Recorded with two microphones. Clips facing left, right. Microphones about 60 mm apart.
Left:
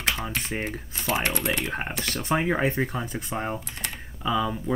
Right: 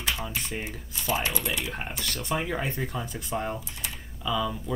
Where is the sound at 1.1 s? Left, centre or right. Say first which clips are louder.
Left 3 dB; left.